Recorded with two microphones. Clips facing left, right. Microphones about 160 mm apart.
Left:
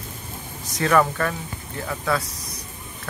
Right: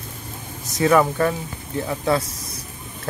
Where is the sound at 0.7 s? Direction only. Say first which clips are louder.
Right 3 dB; 10° right (ahead or behind).